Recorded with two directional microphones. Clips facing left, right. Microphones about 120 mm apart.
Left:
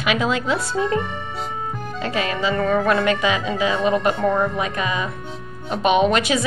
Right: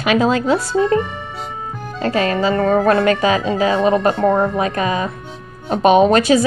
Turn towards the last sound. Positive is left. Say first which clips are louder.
# right 6 dB
turn(degrees=-40)  # may be behind; listen again after turning